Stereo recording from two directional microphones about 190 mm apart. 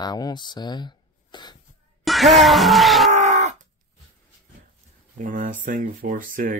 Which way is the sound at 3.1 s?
40° right (ahead or behind).